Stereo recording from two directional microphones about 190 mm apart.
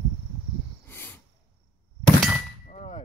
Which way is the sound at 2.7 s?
40° left (ahead or behind).